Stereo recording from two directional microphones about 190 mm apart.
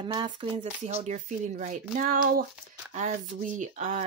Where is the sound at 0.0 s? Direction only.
25° right (ahead or behind).